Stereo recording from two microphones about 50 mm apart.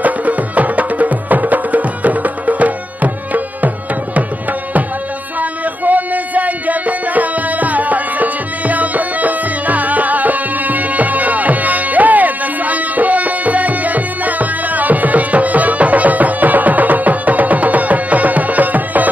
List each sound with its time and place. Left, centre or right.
0.0 s music: right
5.4 s music: right